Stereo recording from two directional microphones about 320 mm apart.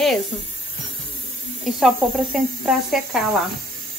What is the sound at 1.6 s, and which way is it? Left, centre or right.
Speech, centre.